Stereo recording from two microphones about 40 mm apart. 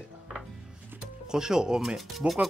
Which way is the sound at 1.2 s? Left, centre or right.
Centre.